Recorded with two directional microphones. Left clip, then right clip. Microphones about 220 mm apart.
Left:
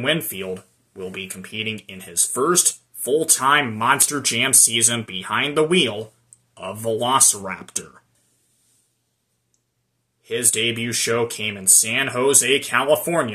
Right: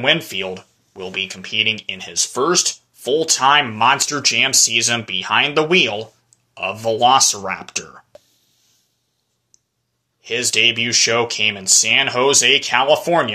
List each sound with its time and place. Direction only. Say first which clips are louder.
0.0 s speech: right 5 dB; 15° left (ahead or behind)
10.2 s speech: right 6 dB; 15° left (ahead or behind)